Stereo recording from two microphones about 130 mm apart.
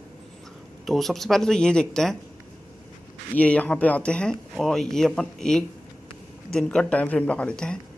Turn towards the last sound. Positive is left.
turn(degrees=5)  # may be behind; listen again after turning